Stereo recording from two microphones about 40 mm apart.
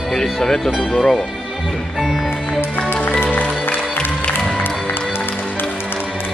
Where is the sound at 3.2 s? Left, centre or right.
Left.